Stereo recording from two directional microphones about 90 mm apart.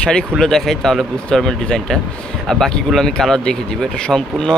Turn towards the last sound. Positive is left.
turn(degrees=5)  # may be behind; listen again after turning